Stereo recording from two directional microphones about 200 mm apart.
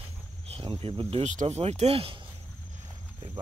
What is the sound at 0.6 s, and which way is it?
Speech, 25° right (ahead or behind).